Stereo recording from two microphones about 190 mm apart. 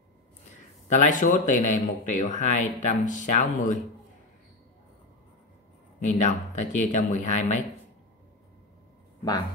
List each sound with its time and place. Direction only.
0.8 s speech: 40° left (ahead or behind)
5.9 s speech: 35° left (ahead or behind)